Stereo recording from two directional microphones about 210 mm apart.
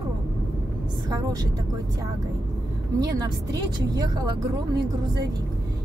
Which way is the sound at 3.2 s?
20° right (ahead or behind).